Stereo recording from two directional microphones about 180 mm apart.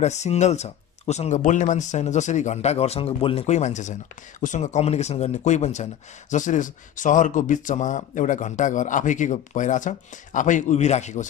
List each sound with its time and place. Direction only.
0.0 s speech: 40° left (ahead or behind)